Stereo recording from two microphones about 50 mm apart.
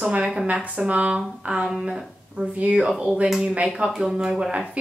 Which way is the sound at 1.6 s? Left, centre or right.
Centre.